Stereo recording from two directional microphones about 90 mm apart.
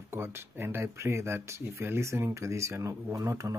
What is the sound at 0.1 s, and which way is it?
Speech, 30° right (ahead or behind).